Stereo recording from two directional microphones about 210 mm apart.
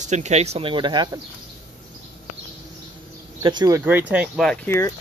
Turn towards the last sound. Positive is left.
turn(degrees=10)  # may be behind; listen again after turning